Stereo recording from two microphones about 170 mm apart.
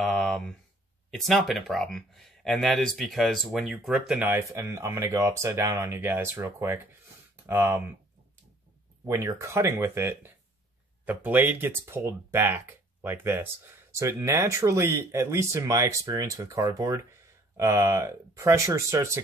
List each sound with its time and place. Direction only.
0.0 s a sound: 5° left (ahead or behind)
1.1 s speech: centre (ahead or behind)
4.3 s speech: 15° right (ahead or behind)
9.0 s speech: 15° right (ahead or behind)